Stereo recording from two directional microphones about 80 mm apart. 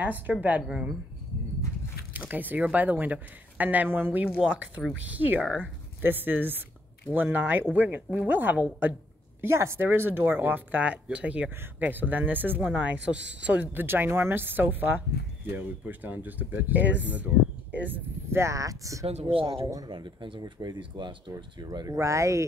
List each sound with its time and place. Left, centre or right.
0.0 s speech: centre
0.7 s speech: centre
2.1 s speech: right
9.4 s speech: right; by 13.8 s centre
13.8 s speech: right
18.4 s speech: right
19.9 s speech: right
21.6 s speech: right